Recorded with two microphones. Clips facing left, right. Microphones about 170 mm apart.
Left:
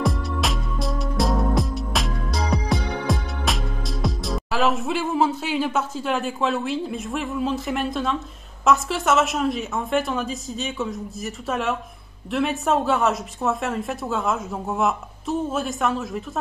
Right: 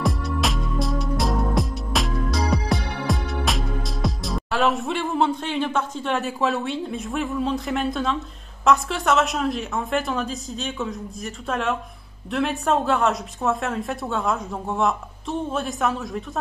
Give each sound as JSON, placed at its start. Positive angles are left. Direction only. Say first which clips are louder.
{"t": 0.0, "sound": "music", "louder": "even", "side_deg": 0}
{"t": 8.6, "sound": "a woman's voice", "louder": "even", "side_deg": 0}